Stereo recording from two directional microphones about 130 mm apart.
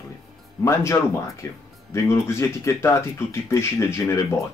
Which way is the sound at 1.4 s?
20° left (ahead or behind).